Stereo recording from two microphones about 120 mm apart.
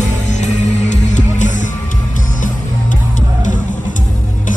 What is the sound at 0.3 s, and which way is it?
Music, 80° left.